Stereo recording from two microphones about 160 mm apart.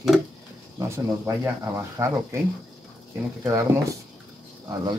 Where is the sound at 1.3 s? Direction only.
20° right (ahead or behind).